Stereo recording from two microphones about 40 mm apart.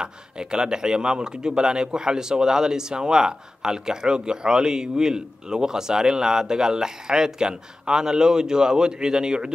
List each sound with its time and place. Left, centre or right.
0.0 s speech: centre